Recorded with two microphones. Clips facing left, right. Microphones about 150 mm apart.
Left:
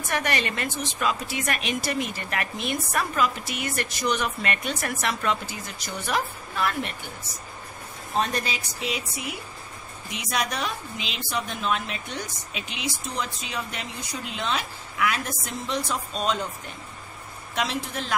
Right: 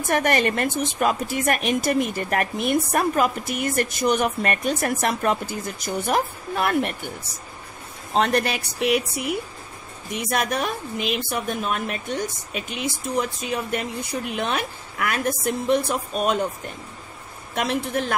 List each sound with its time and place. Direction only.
0.1 s a woman's voice: 50° right (ahead or behind)
8.1 s a woman's voice: 65° right (ahead or behind)
17.6 s a woman's voice: 55° right (ahead or behind)